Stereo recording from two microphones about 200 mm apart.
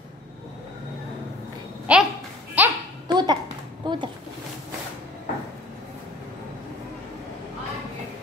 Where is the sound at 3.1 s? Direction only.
20° right (ahead or behind).